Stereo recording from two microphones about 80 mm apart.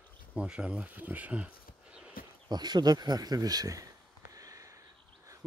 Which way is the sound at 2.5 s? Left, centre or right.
Right.